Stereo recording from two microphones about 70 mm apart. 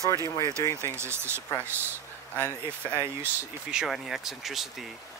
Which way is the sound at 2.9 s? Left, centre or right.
Right.